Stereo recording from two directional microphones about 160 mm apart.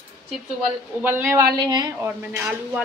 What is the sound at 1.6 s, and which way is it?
Speech, 25° right (ahead or behind).